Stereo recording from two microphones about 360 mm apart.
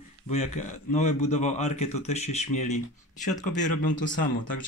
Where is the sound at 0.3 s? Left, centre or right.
Centre.